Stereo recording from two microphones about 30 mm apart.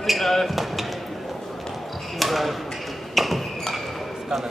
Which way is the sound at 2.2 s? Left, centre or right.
Centre.